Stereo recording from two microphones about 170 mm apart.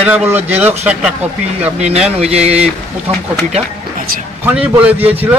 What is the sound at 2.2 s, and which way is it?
Speech, 40° right (ahead or behind).